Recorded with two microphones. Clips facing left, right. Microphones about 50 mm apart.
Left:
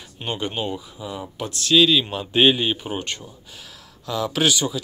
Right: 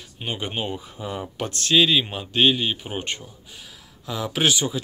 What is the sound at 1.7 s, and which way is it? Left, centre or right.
Speech, centre.